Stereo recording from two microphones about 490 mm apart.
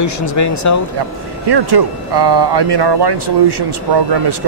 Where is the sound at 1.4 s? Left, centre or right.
Right.